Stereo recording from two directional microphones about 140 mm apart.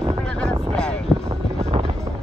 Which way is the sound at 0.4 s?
5° left (ahead or behind).